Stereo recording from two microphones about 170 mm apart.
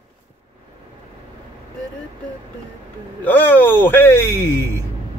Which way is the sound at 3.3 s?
10° left (ahead or behind).